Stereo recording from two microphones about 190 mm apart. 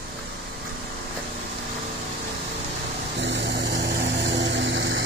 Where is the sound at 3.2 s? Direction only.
65° right (ahead or behind).